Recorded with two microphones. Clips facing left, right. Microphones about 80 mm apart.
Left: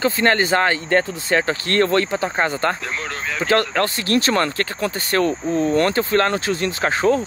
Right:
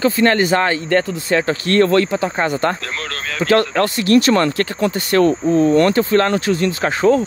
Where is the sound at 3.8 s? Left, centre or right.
Left.